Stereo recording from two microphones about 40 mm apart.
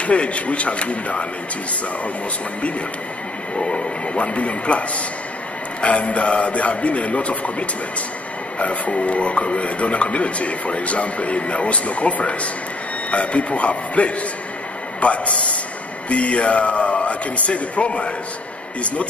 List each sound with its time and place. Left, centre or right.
0.0 s speech: left
3.5 s speech: left